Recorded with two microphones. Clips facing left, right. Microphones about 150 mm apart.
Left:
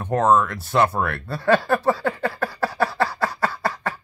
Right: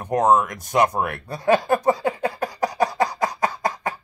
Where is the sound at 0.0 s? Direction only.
15° right (ahead or behind).